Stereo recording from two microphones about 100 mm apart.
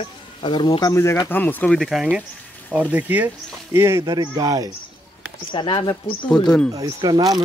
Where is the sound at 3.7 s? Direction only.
25° right (ahead or behind).